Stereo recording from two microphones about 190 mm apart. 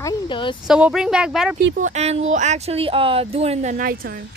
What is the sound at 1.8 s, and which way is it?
Speech, 35° right (ahead or behind).